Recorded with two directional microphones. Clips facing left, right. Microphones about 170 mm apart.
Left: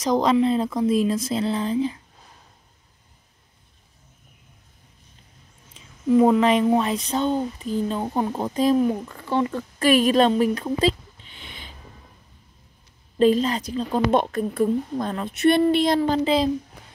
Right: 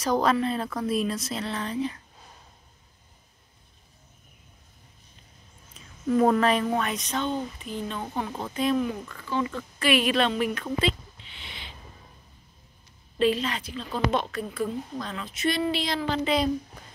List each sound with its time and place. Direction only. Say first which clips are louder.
0.0 s speech: left 5 dB; 20° left (ahead or behind)
6.0 s speech: left 5 dB; 15° left (ahead or behind); by 9.3 s 30° left (ahead or behind)
9.3 s a woman's voice: left 5 dB; 50° left (ahead or behind)
13.2 s a woman's voice: left 6 dB; 40° left (ahead or behind)